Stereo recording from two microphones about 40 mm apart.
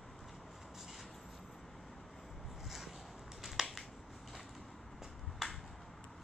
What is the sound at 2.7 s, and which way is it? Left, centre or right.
Boat, centre.